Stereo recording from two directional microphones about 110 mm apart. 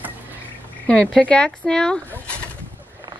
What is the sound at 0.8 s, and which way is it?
Speech, 10° left (ahead or behind).